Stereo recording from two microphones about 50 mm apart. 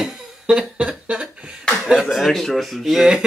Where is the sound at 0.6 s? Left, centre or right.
Centre.